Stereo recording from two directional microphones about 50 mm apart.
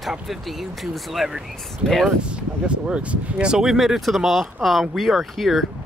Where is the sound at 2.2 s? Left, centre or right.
Right.